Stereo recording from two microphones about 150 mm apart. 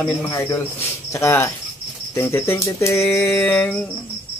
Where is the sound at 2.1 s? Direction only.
15° left (ahead or behind).